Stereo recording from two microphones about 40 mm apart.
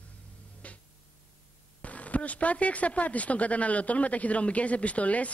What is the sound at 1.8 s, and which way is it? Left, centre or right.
Speech, left.